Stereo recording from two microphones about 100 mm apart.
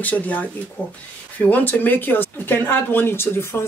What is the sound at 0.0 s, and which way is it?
A woman's voice, 15° left (ahead or behind).